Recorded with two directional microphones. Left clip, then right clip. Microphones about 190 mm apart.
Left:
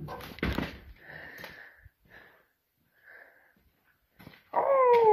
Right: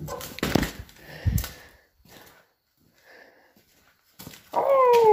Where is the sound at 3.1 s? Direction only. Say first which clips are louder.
Right 2 dB; 35° right (ahead or behind).